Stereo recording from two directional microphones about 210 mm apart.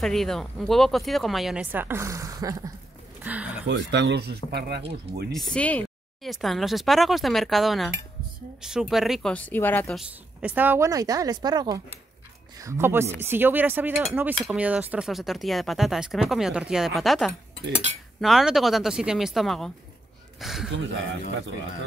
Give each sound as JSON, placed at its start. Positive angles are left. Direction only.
{"t": 0.0, "sound": "speech", "side_deg": 0}
{"t": 3.3, "sound": "a sound", "side_deg": -5}
{"t": 3.6, "sound": "speech", "side_deg": -55}
{"t": 5.3, "sound": "speech", "side_deg": 5}
{"t": 9.9, "sound": "speech", "side_deg": -5}
{"t": 20.7, "sound": "speech", "side_deg": -60}